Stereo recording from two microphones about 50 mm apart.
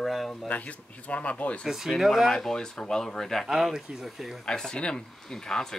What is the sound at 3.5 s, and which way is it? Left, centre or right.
Speech, centre.